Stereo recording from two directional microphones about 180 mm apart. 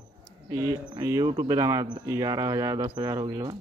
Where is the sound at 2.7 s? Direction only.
30° right (ahead or behind).